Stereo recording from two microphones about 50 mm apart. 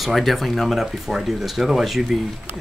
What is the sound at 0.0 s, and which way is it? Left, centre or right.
Speech, centre.